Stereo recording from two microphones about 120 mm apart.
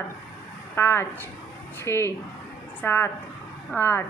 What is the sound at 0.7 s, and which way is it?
A woman's voice, 20° left (ahead or behind).